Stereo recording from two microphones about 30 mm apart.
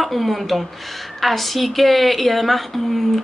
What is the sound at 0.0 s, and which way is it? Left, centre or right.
A woman's voice, centre.